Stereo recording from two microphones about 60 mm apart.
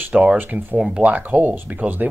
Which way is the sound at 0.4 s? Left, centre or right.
Right.